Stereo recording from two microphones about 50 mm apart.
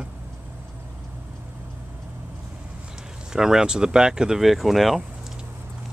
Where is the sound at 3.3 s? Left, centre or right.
Centre.